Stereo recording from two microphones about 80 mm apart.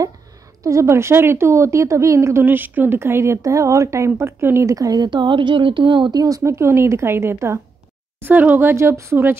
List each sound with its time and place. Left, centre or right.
0.7 s a woman's voice: right
4.7 s speech: right
6.2 s a woman's voice: right
8.2 s speech: right